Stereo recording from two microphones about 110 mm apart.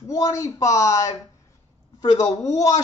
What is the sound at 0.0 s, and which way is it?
Speech, 30° left (ahead or behind).